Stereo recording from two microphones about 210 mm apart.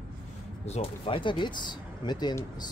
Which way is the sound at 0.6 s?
30° left (ahead or behind).